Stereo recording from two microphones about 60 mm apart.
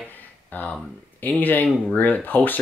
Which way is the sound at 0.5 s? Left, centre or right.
Left.